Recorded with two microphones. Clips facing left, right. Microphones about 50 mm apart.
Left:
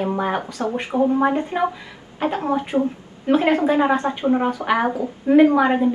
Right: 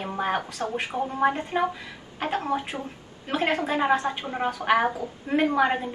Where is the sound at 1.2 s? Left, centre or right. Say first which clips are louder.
Left 4 dB; centre.